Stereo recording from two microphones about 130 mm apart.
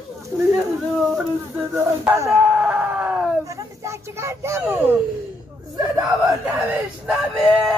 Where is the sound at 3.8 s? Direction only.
20° right (ahead or behind).